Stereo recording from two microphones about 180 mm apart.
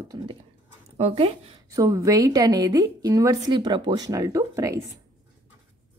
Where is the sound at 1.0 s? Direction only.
35° right (ahead or behind).